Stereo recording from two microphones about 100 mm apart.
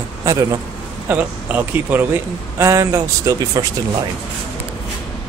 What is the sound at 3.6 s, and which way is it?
Speech, 40° right (ahead or behind).